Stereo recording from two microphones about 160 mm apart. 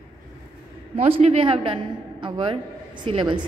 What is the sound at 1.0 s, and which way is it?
A woman's voice, 40° right (ahead or behind).